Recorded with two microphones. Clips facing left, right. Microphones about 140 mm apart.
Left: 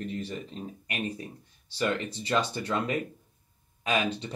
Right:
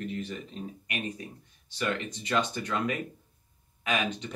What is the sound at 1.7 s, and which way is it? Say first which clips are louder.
Speech: left 2 dB; 35° left (ahead or behind).